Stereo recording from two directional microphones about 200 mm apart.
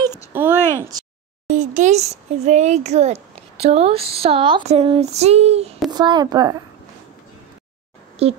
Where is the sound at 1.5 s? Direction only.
40° right (ahead or behind).